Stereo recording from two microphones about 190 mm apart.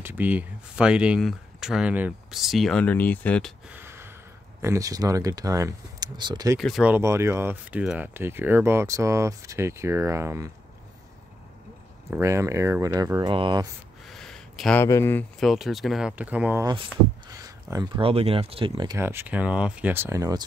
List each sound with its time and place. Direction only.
0.0 s speech: 10° right (ahead or behind)
3.7 s a sound: 10° right (ahead or behind)
4.6 s speech: 15° right (ahead or behind)
6.6 s speech: 5° right (ahead or behind)
12.1 s speech: 15° right (ahead or behind)
14.0 s a sound: centre (ahead or behind)
14.9 s speech: 15° left (ahead or behind)
15.4 s speech: centre (ahead or behind)
17.3 s a sound: 15° right (ahead or behind)
18.0 s speech: 30° right (ahead or behind)